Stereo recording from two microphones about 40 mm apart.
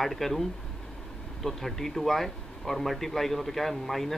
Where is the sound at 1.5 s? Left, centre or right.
Centre.